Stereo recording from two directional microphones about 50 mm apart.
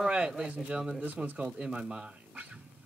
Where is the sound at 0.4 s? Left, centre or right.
Right.